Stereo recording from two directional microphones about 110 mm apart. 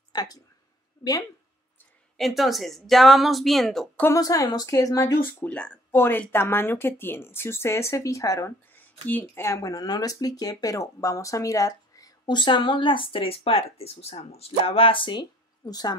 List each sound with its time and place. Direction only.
0.1 s a sound: 35° left (ahead or behind)
2.1 s speech: centre (ahead or behind)
4.2 s speech: 35° left (ahead or behind)
5.4 s speech: 10° left (ahead or behind); by 8.5 s 30° left (ahead or behind)
9.0 s speech: 15° left (ahead or behind); by 15.9 s 35° left (ahead or behind)